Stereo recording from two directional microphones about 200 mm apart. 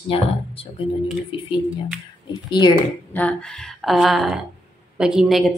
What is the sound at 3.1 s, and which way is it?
Speech, 5° left (ahead or behind).